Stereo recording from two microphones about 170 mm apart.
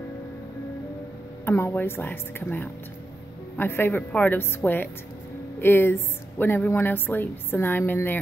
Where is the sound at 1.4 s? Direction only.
15° left (ahead or behind).